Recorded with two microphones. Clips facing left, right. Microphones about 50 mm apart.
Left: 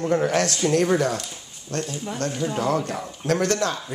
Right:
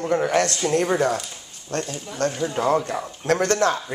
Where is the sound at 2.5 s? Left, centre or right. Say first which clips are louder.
Right 3 dB; right.